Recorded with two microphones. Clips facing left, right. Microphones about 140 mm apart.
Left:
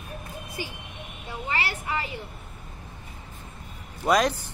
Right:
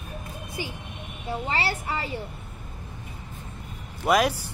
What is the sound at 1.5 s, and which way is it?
Speech, 30° right (ahead or behind).